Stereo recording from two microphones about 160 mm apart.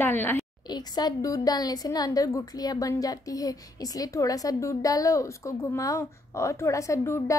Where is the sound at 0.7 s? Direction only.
25° left (ahead or behind).